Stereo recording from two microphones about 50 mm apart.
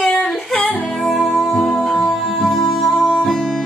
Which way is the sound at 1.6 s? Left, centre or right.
Centre.